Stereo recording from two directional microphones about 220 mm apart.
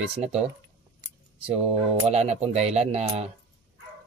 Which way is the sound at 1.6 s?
25° right (ahead or behind).